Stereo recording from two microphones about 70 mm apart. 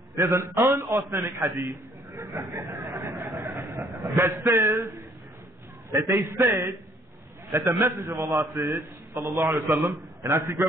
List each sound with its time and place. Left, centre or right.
0.1 s a man's voice: right
2.7 s a sound: right
3.3 s train: right
3.6 s speech: right
4.4 s a man's voice: right